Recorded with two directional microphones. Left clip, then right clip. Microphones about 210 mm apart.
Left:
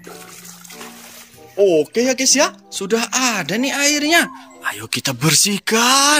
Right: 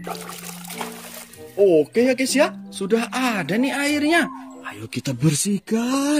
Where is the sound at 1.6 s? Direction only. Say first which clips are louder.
Left 1 dB; 5° right (ahead or behind).